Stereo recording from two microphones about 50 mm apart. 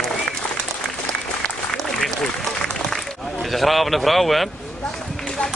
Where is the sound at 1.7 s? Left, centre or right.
Centre.